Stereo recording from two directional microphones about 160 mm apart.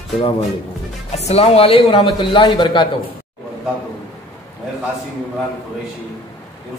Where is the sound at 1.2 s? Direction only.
40° left (ahead or behind).